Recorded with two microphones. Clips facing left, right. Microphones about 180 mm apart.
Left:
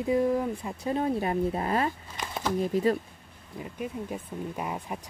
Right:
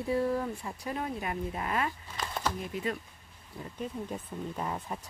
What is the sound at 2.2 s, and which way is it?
Speech, 15° left (ahead or behind).